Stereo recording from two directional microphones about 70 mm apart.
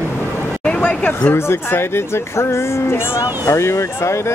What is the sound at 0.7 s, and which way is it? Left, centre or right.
Speech, centre.